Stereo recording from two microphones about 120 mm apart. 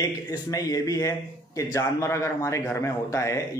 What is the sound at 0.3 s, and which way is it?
Speech, 30° left (ahead or behind).